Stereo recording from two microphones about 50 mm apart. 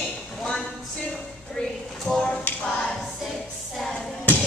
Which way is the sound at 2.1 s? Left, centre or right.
Centre.